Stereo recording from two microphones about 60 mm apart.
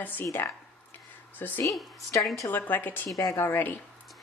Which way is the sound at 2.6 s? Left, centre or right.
Left.